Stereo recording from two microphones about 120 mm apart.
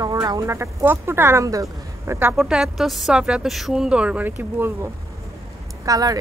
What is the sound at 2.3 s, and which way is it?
A woman's voice, 5° right (ahead or behind).